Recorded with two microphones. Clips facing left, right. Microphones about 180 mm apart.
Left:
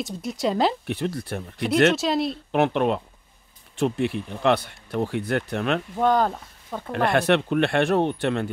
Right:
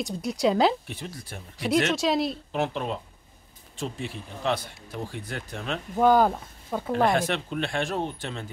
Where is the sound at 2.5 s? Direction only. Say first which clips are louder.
Left 7 dB; 65° left (ahead or behind).